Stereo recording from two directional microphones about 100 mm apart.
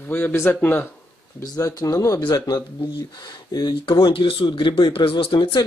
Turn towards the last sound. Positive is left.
turn(degrees=65)  # may be behind; listen again after turning